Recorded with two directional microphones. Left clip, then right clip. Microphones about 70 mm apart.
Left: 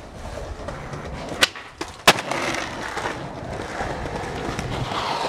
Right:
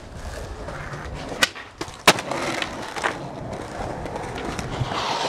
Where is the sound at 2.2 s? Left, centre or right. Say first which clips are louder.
Left 1 dB; centre.